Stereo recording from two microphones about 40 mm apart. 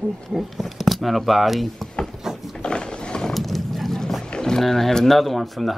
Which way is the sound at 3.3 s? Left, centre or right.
Centre.